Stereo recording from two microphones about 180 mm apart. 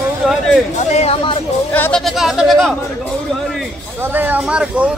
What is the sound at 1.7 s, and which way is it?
Speech, 10° left (ahead or behind).